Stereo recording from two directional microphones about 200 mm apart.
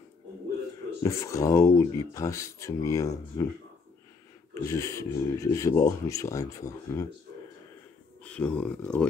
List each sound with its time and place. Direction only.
1.0 s speech: 15° left (ahead or behind)
4.6 s speech: 15° left (ahead or behind)
8.2 s speech: 5° left (ahead or behind)